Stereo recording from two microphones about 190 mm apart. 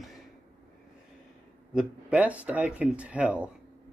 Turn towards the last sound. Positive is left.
turn(degrees=-5)  # may be behind; listen again after turning